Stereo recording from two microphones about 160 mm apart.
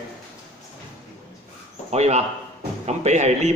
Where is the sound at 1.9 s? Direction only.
45° right (ahead or behind).